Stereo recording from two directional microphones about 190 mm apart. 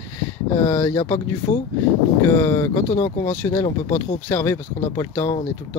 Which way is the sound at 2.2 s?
15° left (ahead or behind).